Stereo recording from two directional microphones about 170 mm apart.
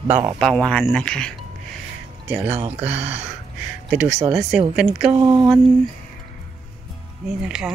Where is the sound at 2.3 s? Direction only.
10° right (ahead or behind).